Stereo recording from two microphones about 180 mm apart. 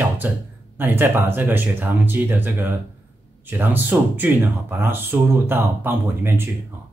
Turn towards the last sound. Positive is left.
turn(degrees=-15)  # may be behind; listen again after turning